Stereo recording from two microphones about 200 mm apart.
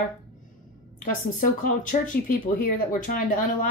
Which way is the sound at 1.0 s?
45° left (ahead or behind).